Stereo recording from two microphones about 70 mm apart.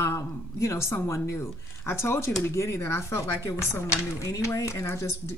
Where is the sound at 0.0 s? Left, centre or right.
Left.